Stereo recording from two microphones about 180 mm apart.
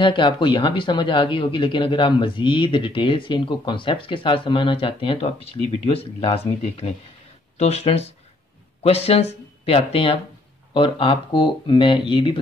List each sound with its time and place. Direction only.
0.0 s speech: 25° left (ahead or behind)